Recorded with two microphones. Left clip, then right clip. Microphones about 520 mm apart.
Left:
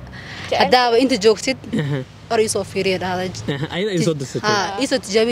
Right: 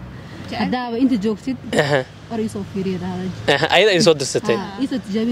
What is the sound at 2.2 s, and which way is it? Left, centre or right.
Speech, left.